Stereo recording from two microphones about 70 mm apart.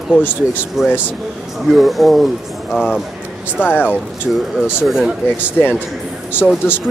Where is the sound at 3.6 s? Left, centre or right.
Left.